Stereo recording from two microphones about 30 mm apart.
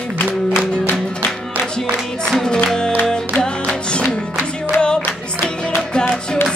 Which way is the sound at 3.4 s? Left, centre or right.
Left.